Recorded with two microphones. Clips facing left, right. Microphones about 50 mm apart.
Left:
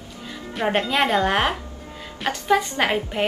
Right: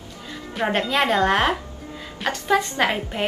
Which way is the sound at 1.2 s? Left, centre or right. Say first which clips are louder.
Right 1 dB; centre.